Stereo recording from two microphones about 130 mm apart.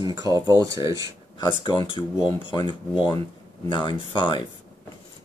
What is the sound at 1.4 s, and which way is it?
Speech, 35° left (ahead or behind).